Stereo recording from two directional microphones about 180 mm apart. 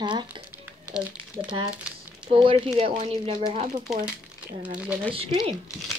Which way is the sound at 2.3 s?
30° right (ahead or behind).